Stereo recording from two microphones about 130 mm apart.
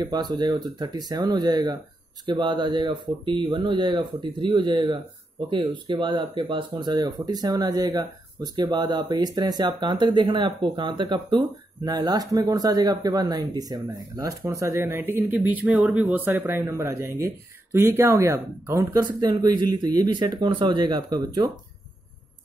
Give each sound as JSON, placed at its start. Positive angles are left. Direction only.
{"t": 0.0, "sound": "speech", "side_deg": -30}